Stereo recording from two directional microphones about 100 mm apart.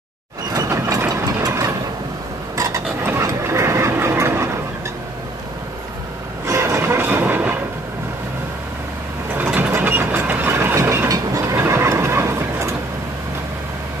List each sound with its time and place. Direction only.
0.5 s mechanisms: 30° right (ahead or behind)
2.5 s stir: 30° right (ahead or behind)
3.2 s vehicle: 30° right (ahead or behind)
6.4 s train: 30° right (ahead or behind)
9.3 s mechanisms: 15° right (ahead or behind)
9.7 s ratchet: 20° right (ahead or behind)